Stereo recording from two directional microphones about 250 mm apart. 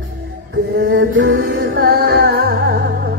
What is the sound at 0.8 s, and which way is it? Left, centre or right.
Music, right.